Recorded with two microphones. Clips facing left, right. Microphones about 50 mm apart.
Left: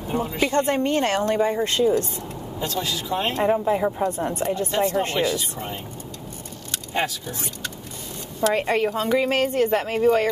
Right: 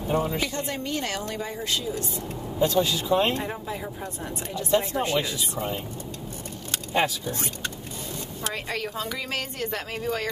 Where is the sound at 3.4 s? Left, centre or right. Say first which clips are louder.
Left 11 dB; left.